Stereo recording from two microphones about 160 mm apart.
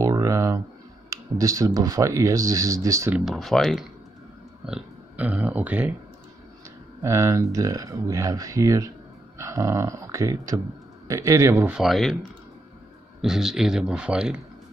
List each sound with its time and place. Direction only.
0.0 s a sound: 20° right (ahead or behind)
1.1 s speech: 20° right (ahead or behind)
3.3 s speech: centre (ahead or behind)
7.0 s speech: 20° right (ahead or behind)
11.7 s speech: centre (ahead or behind)
13.2 s speech: 5° right (ahead or behind)